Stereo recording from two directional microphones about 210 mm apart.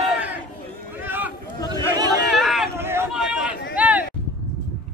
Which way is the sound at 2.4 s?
Centre (ahead or behind).